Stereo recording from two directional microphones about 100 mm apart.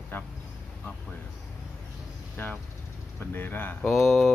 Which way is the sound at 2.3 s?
15° left (ahead or behind).